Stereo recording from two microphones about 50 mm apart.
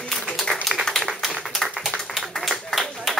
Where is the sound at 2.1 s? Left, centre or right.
Centre.